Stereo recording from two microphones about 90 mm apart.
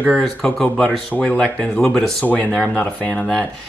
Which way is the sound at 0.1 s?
Centre (ahead or behind).